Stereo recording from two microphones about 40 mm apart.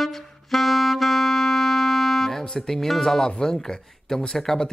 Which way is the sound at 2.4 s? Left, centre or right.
Centre.